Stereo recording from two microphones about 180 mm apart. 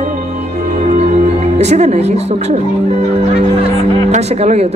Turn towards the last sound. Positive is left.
turn(degrees=-35)  # may be behind; listen again after turning